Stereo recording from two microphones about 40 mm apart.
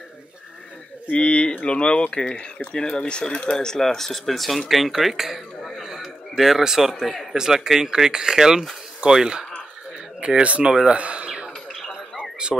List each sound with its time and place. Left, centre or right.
1.1 s speech: left; by 9.5 s centre
10.2 s speech: right
12.2 s a sound: right